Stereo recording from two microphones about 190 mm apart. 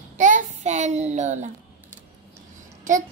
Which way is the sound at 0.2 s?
40° right (ahead or behind).